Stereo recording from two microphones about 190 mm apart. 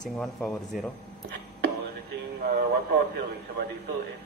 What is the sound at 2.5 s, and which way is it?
Radio, 55° right (ahead or behind).